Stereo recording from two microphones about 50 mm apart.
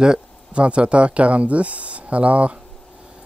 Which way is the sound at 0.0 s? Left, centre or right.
Centre.